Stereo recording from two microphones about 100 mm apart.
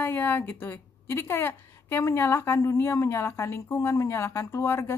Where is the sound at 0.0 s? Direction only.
20° left (ahead or behind).